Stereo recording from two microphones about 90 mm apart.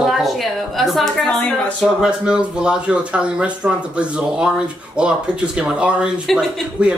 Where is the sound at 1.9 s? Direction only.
10° right (ahead or behind).